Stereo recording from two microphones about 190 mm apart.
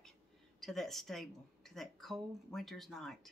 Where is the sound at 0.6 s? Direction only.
Centre (ahead or behind).